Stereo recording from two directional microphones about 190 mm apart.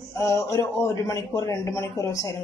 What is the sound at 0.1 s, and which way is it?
A man's voice, 15° left (ahead or behind).